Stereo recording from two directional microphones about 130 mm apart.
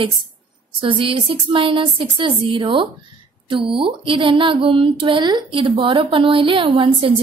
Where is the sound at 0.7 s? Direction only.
40° right (ahead or behind).